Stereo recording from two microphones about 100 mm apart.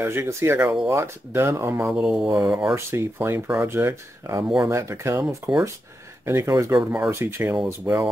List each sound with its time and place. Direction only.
0.0 s speech: 25° right (ahead or behind)
1.9 s speech: 10° right (ahead or behind)
2.7 s speech: 25° right (ahead or behind)